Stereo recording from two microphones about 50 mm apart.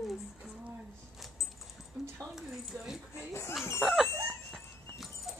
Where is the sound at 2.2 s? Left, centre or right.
Centre.